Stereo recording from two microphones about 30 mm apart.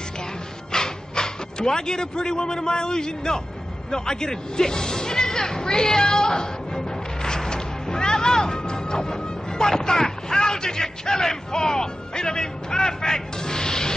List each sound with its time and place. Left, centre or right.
0.7 s speech: left
3.9 s music: left